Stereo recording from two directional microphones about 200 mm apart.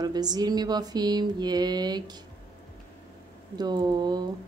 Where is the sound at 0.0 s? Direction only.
20° right (ahead or behind).